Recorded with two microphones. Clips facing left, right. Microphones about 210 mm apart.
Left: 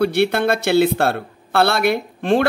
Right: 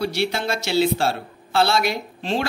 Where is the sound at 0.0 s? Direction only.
60° left (ahead or behind).